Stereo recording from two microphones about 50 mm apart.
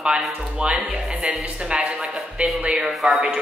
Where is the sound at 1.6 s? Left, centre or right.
Centre.